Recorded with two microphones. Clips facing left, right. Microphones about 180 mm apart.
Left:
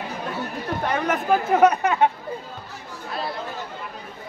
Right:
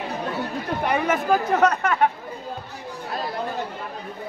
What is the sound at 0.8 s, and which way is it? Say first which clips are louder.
Speech: right 1 dB; 5° right (ahead or behind).